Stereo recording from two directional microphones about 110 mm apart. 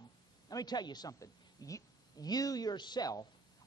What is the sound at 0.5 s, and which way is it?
A woman's voice, 35° left (ahead or behind).